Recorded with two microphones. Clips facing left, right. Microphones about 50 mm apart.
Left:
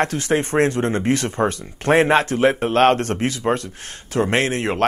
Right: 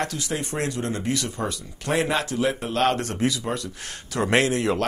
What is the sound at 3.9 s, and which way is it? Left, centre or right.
A man's voice, left.